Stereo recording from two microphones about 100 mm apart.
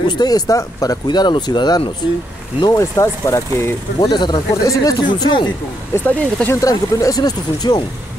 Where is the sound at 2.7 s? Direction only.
30° left (ahead or behind).